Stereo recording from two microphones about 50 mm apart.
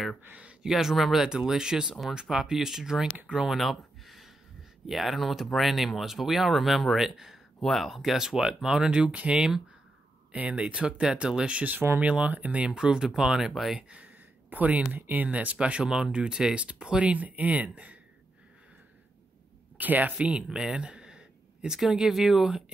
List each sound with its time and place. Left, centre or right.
0.3 s speech: right
0.7 s speech: centre
3.5 s a sound: centre
4.8 s speech: centre
10.3 s speech: right
12.7 s speech: centre
14.5 s speech: right
15.2 s speech: right
19.8 s speech: right
20.2 s speech: centre
20.5 s a sound: centre
21.7 s speech: centre